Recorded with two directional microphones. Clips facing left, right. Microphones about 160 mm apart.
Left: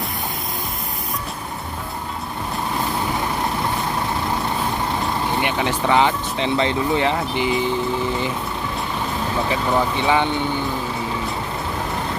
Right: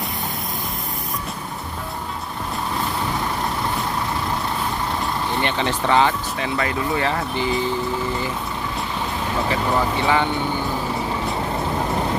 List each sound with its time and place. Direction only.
5.4 s speech: 10° left (ahead or behind)
9.5 s speech: 20° left (ahead or behind)